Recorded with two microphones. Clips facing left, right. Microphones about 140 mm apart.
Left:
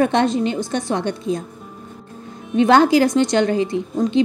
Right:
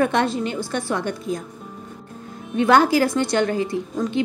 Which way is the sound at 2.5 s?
25° left (ahead or behind).